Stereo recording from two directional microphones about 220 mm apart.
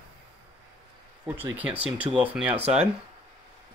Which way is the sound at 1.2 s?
10° right (ahead or behind).